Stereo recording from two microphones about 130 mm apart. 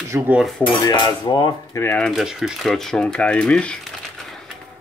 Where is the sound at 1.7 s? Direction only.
15° left (ahead or behind).